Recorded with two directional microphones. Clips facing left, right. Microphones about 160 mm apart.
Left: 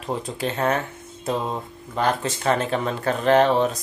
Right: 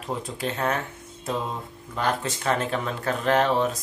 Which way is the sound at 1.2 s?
30° left (ahead or behind).